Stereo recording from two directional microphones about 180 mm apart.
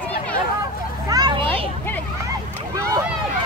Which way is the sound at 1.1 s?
20° right (ahead or behind).